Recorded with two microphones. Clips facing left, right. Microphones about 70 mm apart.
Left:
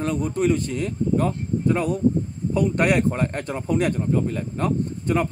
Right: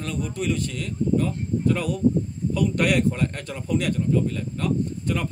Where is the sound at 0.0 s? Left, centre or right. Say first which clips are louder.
Left 6 dB; left.